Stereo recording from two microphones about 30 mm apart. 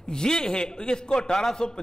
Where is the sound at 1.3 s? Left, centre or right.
Centre.